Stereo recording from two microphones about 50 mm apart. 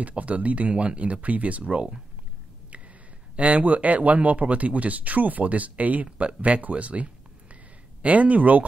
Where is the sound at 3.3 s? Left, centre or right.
Right.